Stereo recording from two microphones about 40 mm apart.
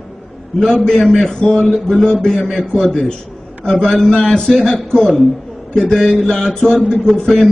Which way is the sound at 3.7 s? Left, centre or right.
Centre.